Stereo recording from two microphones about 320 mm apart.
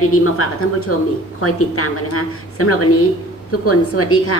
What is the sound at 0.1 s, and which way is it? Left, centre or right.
A woman's voice, left.